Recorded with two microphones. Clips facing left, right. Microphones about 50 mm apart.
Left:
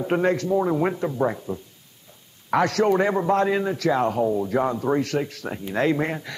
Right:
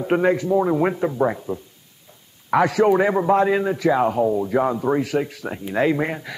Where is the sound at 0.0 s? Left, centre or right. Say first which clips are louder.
Right 3 dB; centre.